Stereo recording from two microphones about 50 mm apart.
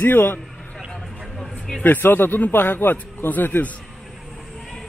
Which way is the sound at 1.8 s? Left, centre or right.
Left.